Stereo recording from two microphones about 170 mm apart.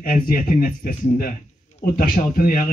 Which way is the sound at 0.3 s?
55° left (ahead or behind).